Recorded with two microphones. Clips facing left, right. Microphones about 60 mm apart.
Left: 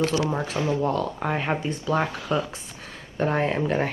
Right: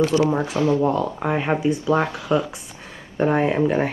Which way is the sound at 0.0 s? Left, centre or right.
Right.